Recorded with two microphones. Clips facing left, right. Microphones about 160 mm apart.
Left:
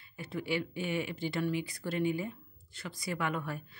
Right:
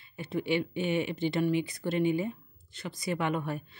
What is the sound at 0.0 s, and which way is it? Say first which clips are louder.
Speech: right 5 dB; 25° right (ahead or behind).